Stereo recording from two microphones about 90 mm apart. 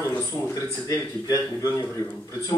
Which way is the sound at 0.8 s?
35° left (ahead or behind).